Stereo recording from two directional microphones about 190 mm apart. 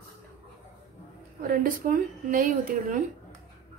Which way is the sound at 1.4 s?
45° right (ahead or behind).